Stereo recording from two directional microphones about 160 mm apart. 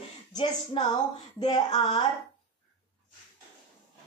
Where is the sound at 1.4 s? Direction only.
25° left (ahead or behind).